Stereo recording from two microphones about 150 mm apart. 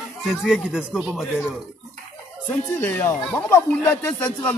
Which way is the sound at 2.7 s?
15° left (ahead or behind).